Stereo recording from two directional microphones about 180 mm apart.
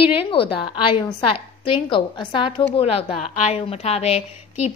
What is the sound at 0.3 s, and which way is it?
A woman's voice, 30° left (ahead or behind).